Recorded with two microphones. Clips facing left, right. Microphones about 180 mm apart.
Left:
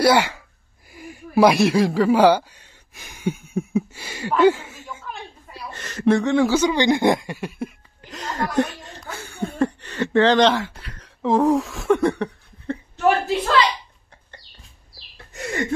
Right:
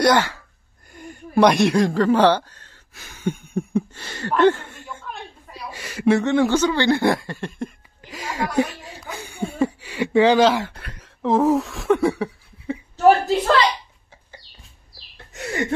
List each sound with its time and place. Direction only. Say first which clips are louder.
0.0 s speech: left 1 dB; 10° left (ahead or behind)
0.9 s a sound: even; 5° left (ahead or behind)
5.7 s speech: even; 10° right (ahead or behind)
6.6 s speech: left 1 dB; 15° left (ahead or behind)
8.1 s a woman's voice: even; 10° right (ahead or behind)
9.0 s speech: even; 15° right (ahead or behind)
11.0 s a sound: even; 5° right (ahead or behind)
12.9 s a woman's voice: right 4 dB; 40° right (ahead or behind)
15.1 s a sound: even; centre (ahead or behind)